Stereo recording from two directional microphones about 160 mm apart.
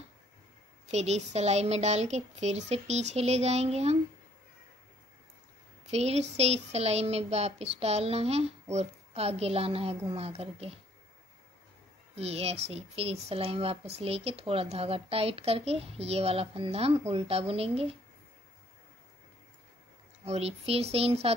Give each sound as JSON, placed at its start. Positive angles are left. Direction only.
{"t": 0.8, "sound": "a woman's voice", "side_deg": -45}
{"t": 5.9, "sound": "speech", "side_deg": -40}
{"t": 12.2, "sound": "speech", "side_deg": -40}
{"t": 20.2, "sound": "speech", "side_deg": -40}